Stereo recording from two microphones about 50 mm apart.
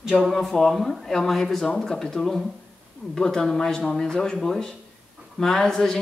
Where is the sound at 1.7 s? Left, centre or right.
Centre.